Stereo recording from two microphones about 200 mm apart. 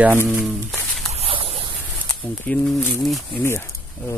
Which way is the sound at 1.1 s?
30° right (ahead or behind).